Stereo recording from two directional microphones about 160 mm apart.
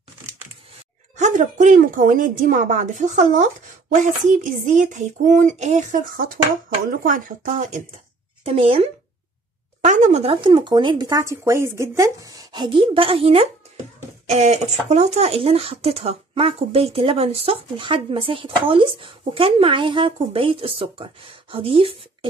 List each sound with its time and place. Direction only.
1.1 s a woman's voice: 50° right (ahead or behind)
8.5 s speech: 35° right (ahead or behind)
9.8 s speech: 50° right (ahead or behind)
10.3 s speech: 30° right (ahead or behind)